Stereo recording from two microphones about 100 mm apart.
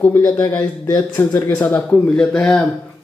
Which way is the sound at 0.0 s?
20° left (ahead or behind).